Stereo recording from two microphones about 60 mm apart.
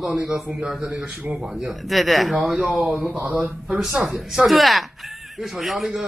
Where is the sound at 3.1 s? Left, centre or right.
Right.